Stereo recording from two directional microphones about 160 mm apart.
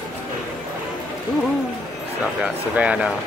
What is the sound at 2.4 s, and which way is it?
Speech, 5° right (ahead or behind).